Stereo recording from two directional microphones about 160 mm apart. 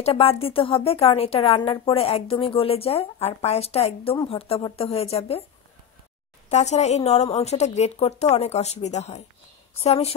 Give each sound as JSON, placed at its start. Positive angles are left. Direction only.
{"t": 0.0, "sound": "a woman's voice", "side_deg": 35}
{"t": 6.5, "sound": "a woman's voice", "side_deg": 45}